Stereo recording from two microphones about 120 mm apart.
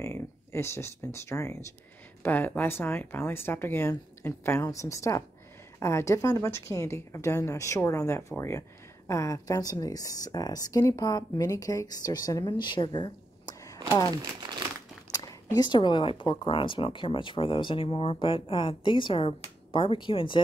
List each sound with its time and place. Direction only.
0.0 s a woman's voice: 20° left (ahead or behind); by 13.6 s 40° left (ahead or behind)
15.1 s speech: 35° left (ahead or behind)